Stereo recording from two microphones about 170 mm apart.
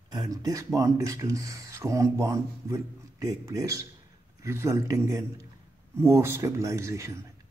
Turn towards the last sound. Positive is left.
turn(degrees=-15)  # may be behind; listen again after turning